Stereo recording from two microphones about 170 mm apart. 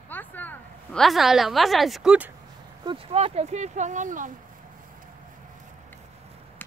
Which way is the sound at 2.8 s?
30° right (ahead or behind).